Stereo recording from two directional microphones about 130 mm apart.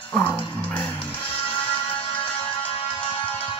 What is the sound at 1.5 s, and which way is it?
Music, 40° left (ahead or behind).